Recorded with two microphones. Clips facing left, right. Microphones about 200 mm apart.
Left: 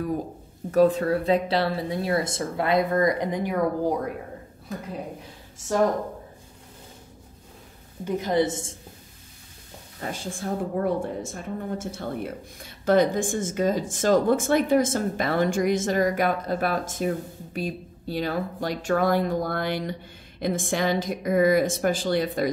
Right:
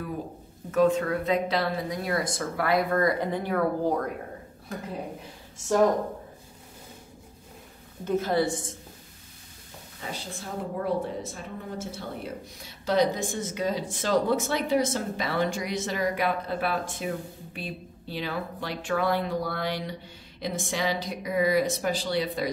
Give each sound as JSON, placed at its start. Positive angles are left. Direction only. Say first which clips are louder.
{"t": 0.7, "sound": "speech", "louder": "left 3 dB", "side_deg": 35}
{"t": 8.0, "sound": "speech", "louder": "left 2 dB", "side_deg": 15}
{"t": 9.9, "sound": "a woman's voice", "louder": "left 5 dB", "side_deg": 50}